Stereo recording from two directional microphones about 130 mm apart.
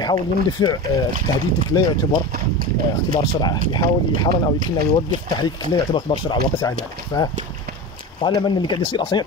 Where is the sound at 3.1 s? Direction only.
35° left (ahead or behind).